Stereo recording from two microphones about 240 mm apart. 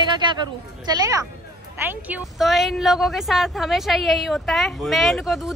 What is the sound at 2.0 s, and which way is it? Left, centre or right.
A woman's voice, centre.